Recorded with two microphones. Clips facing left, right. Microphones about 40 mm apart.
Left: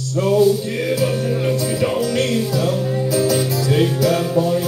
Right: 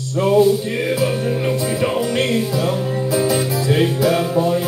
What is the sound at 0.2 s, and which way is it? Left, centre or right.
Music, centre.